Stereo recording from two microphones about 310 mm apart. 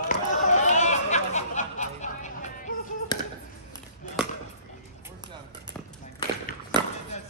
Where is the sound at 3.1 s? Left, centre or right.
Centre.